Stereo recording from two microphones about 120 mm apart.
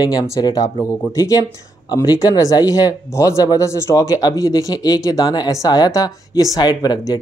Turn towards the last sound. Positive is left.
turn(degrees=35)  # may be behind; listen again after turning